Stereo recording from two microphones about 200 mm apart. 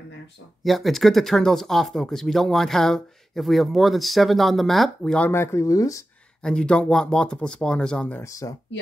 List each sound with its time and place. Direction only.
0.7 s speech: centre (ahead or behind); by 6.0 s 15° left (ahead or behind)
6.4 s speech: 5° left (ahead or behind)